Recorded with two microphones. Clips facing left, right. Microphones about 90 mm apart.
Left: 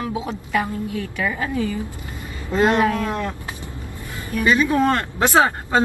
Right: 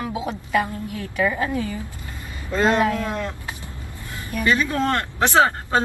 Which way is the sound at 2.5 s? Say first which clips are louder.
Left 2 dB; 20° left (ahead or behind).